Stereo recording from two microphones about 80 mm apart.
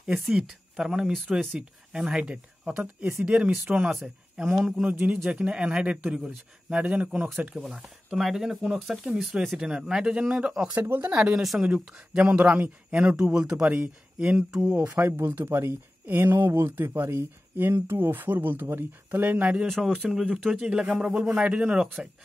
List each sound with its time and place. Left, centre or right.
0.0 s speech: centre
4.8 s speech: centre
10.7 s speech: right
11.1 s speech: centre
14.9 s speech: right
19.5 s speech: centre
20.6 s speech: centre